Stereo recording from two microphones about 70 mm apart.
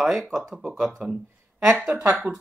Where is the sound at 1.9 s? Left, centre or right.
Right.